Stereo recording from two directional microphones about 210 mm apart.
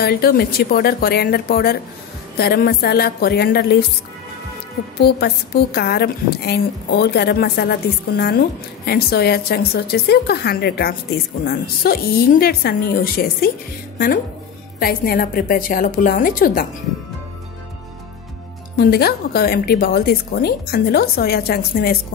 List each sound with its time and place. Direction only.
0.0 s a woman's voice: 45° left (ahead or behind)
4.9 s a woman's voice: 50° left (ahead or behind)
18.8 s a woman's voice: 45° left (ahead or behind)